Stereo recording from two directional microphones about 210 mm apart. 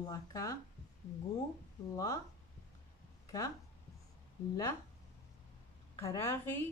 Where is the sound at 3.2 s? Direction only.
15° left (ahead or behind).